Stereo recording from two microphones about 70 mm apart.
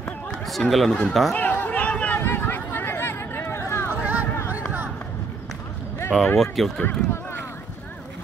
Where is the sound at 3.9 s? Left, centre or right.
Right.